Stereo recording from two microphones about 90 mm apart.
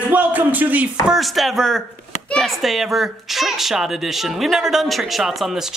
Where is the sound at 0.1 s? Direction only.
20° right (ahead or behind).